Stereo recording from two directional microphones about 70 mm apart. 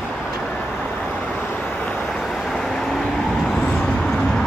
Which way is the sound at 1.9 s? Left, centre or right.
Centre.